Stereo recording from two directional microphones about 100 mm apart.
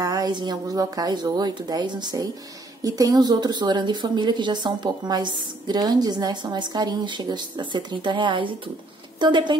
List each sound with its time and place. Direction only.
0.0 s speech: 40° right (ahead or behind)